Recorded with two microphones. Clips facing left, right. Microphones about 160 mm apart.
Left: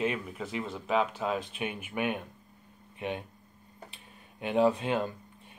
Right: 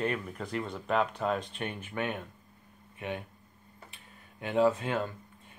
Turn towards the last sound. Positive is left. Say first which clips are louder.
# left 1 dB
turn(degrees=20)  # may be behind; listen again after turning